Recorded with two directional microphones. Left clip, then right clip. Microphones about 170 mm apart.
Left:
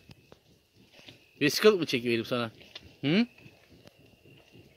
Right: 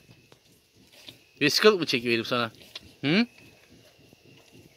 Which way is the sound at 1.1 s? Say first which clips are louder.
Right 5 dB; 15° right (ahead or behind).